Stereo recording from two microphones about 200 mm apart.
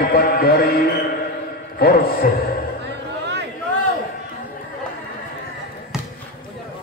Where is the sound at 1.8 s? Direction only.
50° left (ahead or behind).